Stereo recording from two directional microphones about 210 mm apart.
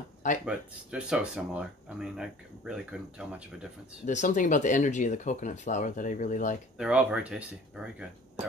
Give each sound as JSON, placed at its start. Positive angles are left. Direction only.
{"t": 0.5, "sound": "speech", "side_deg": -5}
{"t": 4.0, "sound": "speech", "side_deg": 35}
{"t": 6.8, "sound": "speech", "side_deg": -5}